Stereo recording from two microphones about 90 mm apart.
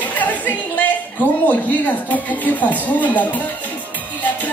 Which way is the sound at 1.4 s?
15° left (ahead or behind).